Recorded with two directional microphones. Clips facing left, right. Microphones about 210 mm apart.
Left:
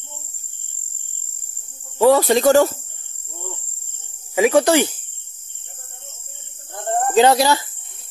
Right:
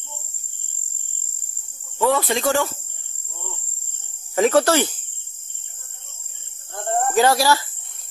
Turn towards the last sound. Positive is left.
turn(degrees=20)  # may be behind; listen again after turning